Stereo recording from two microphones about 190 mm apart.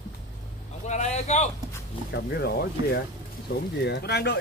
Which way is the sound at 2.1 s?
55° left (ahead or behind).